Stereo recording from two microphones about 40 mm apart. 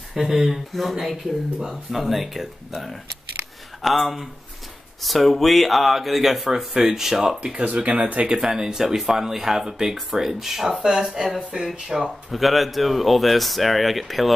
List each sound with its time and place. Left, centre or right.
0.1 s speech: centre
7.5 s speech: right
8.4 s speech: centre